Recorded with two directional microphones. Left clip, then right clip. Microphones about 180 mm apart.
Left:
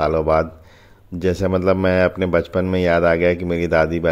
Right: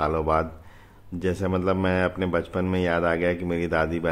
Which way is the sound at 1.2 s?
35° left (ahead or behind).